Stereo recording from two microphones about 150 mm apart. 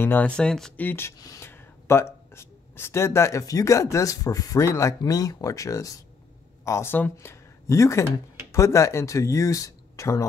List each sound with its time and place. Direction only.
0.0 s speech: 10° left (ahead or behind)